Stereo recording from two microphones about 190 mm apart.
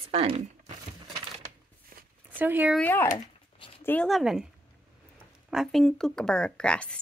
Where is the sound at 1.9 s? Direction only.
50° right (ahead or behind).